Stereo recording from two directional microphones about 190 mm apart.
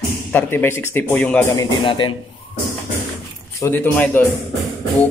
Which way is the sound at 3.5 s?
10° left (ahead or behind).